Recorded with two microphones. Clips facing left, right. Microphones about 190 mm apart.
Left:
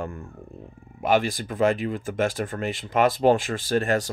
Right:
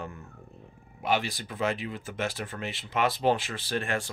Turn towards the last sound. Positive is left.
turn(degrees=40)  # may be behind; listen again after turning